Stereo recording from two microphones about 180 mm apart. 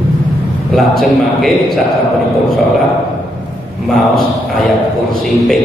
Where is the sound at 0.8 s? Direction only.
Centre (ahead or behind).